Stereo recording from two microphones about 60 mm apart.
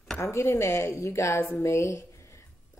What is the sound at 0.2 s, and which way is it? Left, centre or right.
Speech, left.